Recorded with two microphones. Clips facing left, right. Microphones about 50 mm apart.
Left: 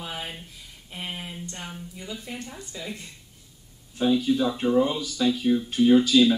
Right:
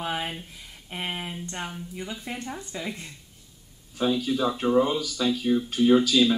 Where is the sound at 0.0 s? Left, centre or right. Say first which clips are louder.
Right 5 dB; right.